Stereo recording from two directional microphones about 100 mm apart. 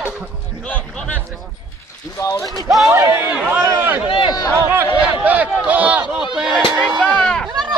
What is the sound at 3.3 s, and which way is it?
Speech, 10° right (ahead or behind).